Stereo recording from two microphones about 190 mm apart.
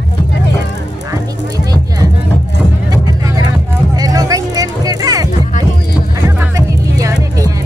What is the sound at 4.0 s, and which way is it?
Music, 20° right (ahead or behind).